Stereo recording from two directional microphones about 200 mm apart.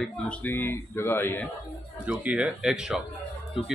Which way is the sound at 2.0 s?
5° right (ahead or behind).